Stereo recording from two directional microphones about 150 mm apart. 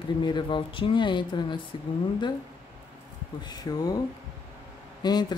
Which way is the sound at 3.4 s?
25° left (ahead or behind).